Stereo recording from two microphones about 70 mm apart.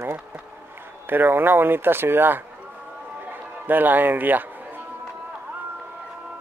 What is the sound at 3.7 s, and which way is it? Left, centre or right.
Speech, right.